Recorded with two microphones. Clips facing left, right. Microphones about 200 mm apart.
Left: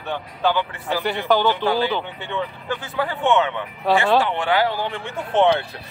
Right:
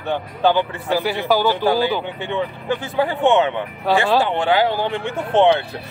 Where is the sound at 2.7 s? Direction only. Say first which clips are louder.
Right 7 dB; 30° right (ahead or behind).